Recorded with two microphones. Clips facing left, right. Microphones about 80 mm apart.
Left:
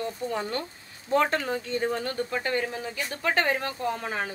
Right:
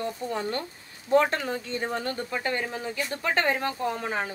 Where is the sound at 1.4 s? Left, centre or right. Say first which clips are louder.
Left 2 dB; right.